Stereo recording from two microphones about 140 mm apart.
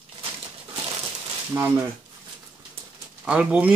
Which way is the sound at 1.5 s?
20° right (ahead or behind).